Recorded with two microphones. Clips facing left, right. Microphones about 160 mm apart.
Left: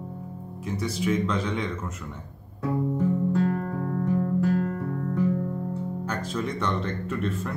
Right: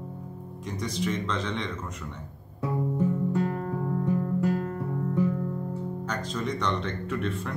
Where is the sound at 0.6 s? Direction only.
5° left (ahead or behind).